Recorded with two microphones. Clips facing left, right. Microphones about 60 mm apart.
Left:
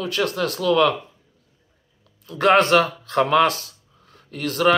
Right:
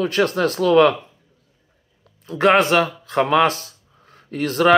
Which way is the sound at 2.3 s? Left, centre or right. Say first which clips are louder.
Right 1 dB; right.